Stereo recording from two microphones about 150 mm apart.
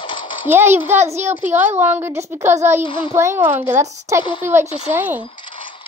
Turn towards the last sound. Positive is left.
turn(degrees=-10)  # may be behind; listen again after turning